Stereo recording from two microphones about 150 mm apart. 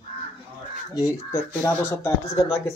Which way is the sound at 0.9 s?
20° left (ahead or behind).